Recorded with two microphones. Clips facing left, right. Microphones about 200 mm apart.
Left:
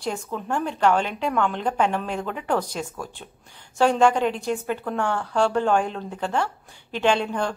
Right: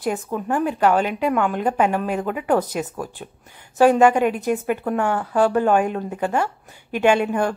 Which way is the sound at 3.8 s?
10° right (ahead or behind).